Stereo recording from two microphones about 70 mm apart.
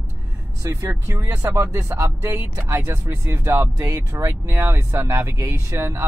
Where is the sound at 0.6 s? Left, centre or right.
Right.